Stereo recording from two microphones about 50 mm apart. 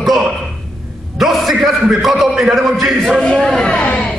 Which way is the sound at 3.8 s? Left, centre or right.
Left.